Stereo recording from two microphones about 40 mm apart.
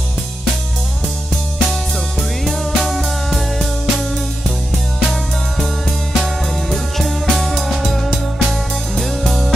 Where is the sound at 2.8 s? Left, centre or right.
Centre.